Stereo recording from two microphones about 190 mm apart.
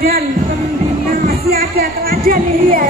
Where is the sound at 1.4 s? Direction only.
55° right (ahead or behind).